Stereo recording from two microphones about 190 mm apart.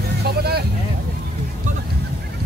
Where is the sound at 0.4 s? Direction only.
55° right (ahead or behind).